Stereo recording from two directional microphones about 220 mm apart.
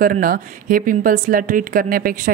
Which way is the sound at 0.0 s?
40° right (ahead or behind).